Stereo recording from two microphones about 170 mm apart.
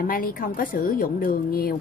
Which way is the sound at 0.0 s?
55° left (ahead or behind).